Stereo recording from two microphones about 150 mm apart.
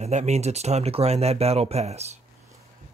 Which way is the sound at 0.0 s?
50° right (ahead or behind).